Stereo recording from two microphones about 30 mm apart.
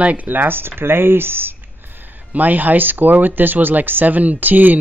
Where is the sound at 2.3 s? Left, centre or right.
Right.